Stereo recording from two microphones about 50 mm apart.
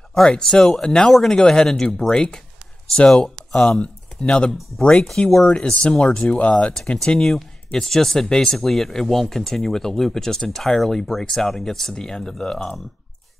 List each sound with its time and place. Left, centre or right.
0.1 s speech: centre
3.5 s speech: centre
4.5 s speech: centre
5.2 s speech: left